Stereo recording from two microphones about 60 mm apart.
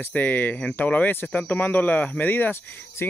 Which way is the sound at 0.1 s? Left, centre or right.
Left.